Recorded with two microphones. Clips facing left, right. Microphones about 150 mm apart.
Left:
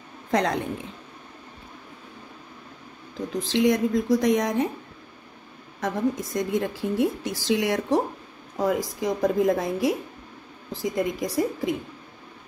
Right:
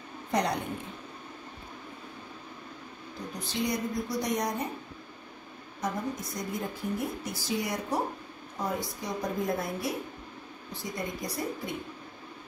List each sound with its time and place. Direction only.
0.3 s a woman's voice: 90° left
3.3 s a woman's voice: 90° left
5.8 s a woman's voice: 90° left